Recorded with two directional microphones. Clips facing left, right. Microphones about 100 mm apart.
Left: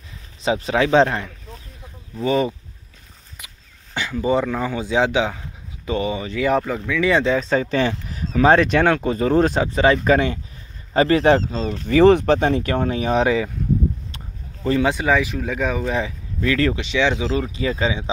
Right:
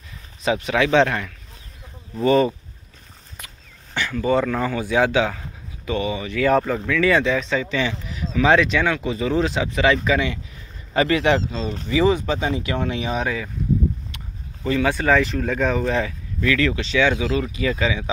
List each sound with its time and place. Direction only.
0.4 s speech: 30° left (ahead or behind)
2.2 s speech: 10° left (ahead or behind)
3.9 s speech: 20° left (ahead or behind)
5.9 s speech: 30° left (ahead or behind)
6.9 s speech: 20° left (ahead or behind)
7.2 s speech: 35° left (ahead or behind)
9.7 s speech: 35° left (ahead or behind)
10.0 s speech: 45° left (ahead or behind)
10.9 s speech: 35° left (ahead or behind)
11.9 s speech: 60° left (ahead or behind); by 13.1 s 40° left (ahead or behind)
13.1 s speech: 75° left (ahead or behind)
14.1 s a sound: 35° left (ahead or behind)
14.9 s speech: 15° left (ahead or behind); by 16.7 s 30° left (ahead or behind)
16.7 s speech: 20° left (ahead or behind)